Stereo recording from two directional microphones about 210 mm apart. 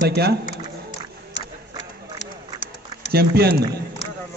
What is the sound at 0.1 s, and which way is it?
Speech, 50° right (ahead or behind).